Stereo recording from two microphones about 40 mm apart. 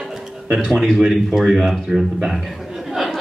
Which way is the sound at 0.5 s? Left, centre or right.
Centre.